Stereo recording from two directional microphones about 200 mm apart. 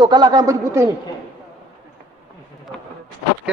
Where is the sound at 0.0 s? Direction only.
20° right (ahead or behind).